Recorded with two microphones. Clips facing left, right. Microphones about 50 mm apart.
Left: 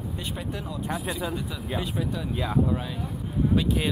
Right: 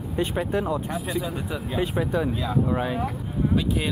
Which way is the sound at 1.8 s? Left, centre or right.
Right.